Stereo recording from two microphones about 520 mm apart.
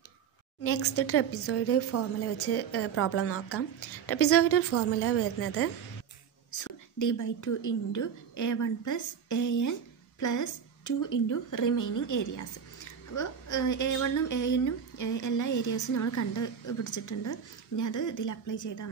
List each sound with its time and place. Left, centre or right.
0.7 s a woman's voice: left